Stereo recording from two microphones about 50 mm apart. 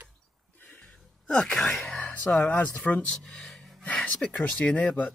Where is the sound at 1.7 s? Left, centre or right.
Centre.